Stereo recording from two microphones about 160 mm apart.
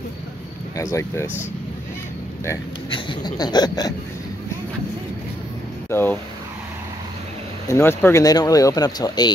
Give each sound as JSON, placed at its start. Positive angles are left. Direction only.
{"t": 0.7, "sound": "speech", "side_deg": 20}
{"t": 2.9, "sound": "speech", "side_deg": 30}
{"t": 5.9, "sound": "speech", "side_deg": 15}
{"t": 7.7, "sound": "speech", "side_deg": 15}